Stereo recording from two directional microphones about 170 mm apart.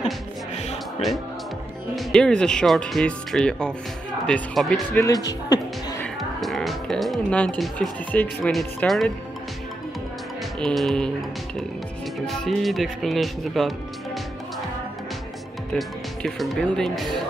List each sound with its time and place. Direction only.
0.6 s music: 40° left (ahead or behind)
2.0 s speech: 5° left (ahead or behind)
5.0 s speech: 20° left (ahead or behind)
6.4 s speech: centre (ahead or behind)
10.6 s speech: centre (ahead or behind)
15.7 s speech: 5° left (ahead or behind)